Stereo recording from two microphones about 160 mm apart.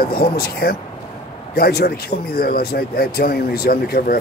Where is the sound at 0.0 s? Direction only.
70° left (ahead or behind).